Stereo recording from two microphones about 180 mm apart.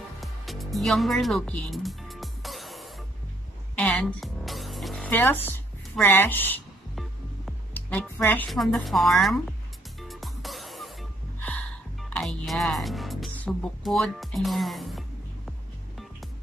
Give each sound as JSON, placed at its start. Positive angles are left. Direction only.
{"t": 0.2, "sound": "music", "side_deg": 0}
{"t": 5.9, "sound": "a woman's voice", "side_deg": 10}
{"t": 7.7, "sound": "a woman's voice", "side_deg": 10}
{"t": 9.9, "sound": "music", "side_deg": 0}